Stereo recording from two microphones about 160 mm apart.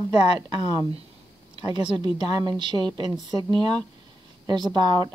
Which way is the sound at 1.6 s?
25° right (ahead or behind).